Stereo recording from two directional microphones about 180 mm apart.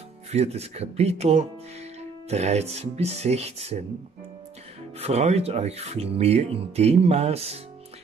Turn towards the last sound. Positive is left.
turn(degrees=-35)  # may be behind; listen again after turning